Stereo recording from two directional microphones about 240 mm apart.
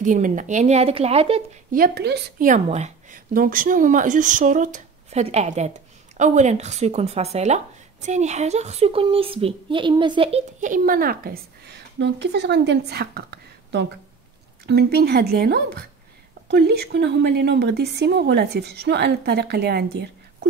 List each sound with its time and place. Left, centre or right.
0.0 s speech: right
1.7 s a woman's voice: right